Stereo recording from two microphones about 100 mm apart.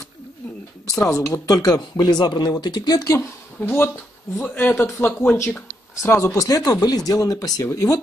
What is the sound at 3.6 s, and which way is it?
Speech, 20° left (ahead or behind).